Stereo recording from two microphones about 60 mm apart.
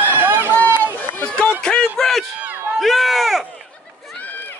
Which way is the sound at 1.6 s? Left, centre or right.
Centre.